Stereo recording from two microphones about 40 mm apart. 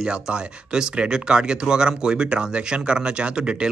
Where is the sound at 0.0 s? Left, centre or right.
Right.